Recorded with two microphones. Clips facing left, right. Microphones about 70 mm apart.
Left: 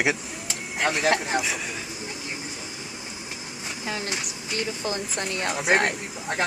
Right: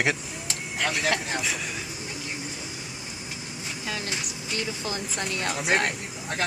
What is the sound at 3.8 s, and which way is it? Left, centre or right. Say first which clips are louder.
Speech: left 2 dB; left.